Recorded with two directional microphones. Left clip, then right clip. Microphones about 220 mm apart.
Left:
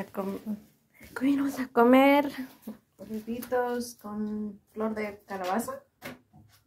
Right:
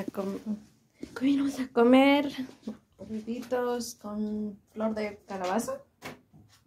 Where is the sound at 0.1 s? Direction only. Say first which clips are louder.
Even; 10° right (ahead or behind).